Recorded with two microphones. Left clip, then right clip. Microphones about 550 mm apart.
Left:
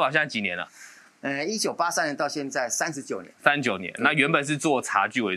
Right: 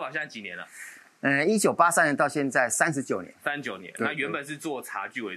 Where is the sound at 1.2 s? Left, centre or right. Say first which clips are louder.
Right 5 dB; right.